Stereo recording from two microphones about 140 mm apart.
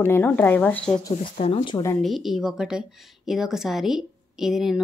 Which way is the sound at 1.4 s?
40° left (ahead or behind).